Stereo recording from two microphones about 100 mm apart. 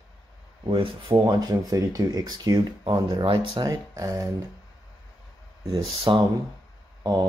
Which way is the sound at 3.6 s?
35° right (ahead or behind).